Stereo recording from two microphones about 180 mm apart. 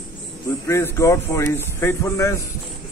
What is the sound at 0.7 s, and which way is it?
Speech, 15° left (ahead or behind).